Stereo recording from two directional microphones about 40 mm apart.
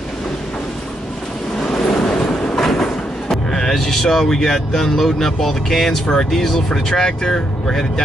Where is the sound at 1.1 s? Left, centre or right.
Centre.